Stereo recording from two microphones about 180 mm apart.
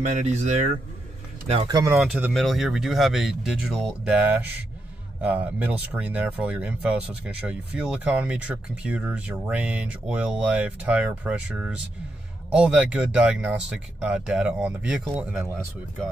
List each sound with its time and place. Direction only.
0.0 s speech: 40° right (ahead or behind)
1.5 s speech: 25° right (ahead or behind)
2.0 s speech: 10° right (ahead or behind)